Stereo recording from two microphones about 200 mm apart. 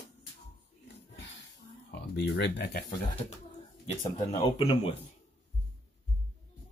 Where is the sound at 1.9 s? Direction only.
55° left (ahead or behind).